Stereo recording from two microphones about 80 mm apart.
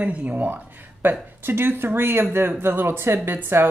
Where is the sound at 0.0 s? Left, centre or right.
Centre.